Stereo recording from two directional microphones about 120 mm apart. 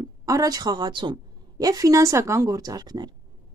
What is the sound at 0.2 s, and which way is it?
A woman's voice, 30° right (ahead or behind).